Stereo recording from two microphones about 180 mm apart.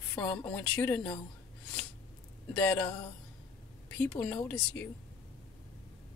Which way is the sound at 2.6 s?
10° left (ahead or behind).